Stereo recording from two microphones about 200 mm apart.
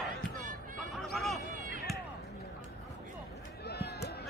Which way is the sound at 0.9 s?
Centre (ahead or behind).